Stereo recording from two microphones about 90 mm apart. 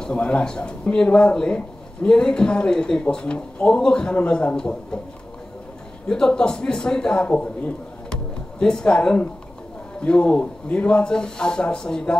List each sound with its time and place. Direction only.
0.0 s speech: 10° left (ahead or behind)
6.0 s a man's voice: 10° left (ahead or behind)